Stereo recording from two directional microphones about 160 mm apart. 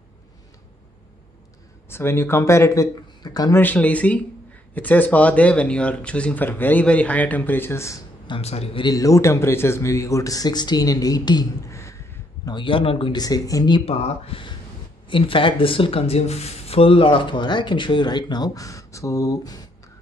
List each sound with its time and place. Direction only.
1.9 s speech: 15° left (ahead or behind)
8.3 s speech: 40° left (ahead or behind)
8.8 s speech: 20° left (ahead or behind)
12.4 s speech: 30° left (ahead or behind)